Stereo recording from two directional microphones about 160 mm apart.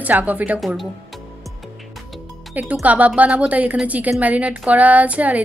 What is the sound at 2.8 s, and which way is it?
A woman's voice, 10° right (ahead or behind).